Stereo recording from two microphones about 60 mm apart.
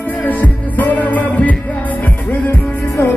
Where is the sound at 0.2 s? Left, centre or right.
Left.